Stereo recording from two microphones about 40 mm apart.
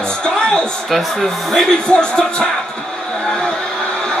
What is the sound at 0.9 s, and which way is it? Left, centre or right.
Speech, centre.